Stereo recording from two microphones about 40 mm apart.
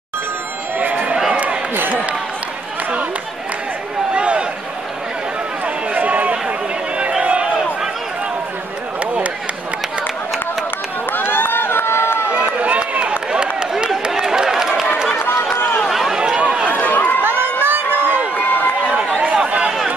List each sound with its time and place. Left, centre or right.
0.7 s a sound: right
1.9 s speech: right
4.1 s a sound: right
5.9 s run: right
7.1 s run: right
9.0 s run: right
11.1 s run: left
12.3 s run: right
13.0 s a sound: right
16.3 s run: right
16.7 s run: left
17.2 s a sound: right
19.2 s run: right